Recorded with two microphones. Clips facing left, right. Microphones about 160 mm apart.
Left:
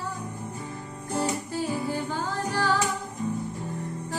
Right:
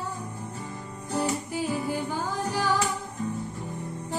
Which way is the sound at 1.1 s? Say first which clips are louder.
Even; 15° right (ahead or behind).